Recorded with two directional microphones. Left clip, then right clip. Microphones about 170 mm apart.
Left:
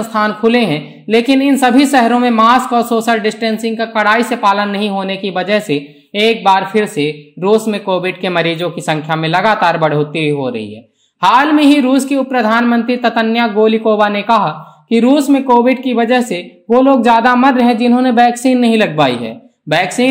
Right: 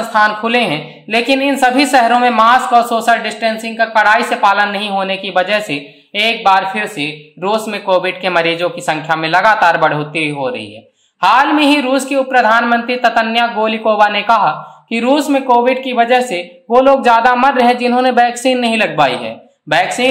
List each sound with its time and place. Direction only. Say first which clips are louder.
0.1 s a woman's voice: right 1 dB; 35° left (ahead or behind)